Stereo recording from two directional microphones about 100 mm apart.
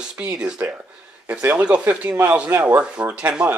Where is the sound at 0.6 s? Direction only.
25° right (ahead or behind).